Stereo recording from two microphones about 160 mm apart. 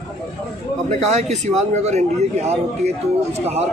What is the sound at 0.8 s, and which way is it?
A man's voice, 45° right (ahead or behind).